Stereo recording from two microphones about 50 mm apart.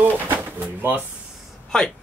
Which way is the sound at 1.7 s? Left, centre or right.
Centre.